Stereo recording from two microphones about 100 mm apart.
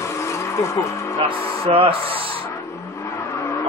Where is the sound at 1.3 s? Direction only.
65° right (ahead or behind).